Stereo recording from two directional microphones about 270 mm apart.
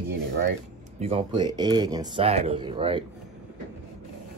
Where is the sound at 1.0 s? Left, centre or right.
Right.